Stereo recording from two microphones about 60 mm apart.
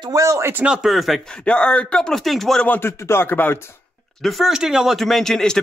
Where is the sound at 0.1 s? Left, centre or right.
Right.